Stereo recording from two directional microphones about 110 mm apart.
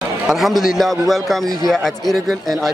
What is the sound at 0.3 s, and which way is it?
Speech, centre (ahead or behind).